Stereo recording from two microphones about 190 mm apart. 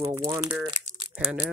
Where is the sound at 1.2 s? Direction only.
5° right (ahead or behind).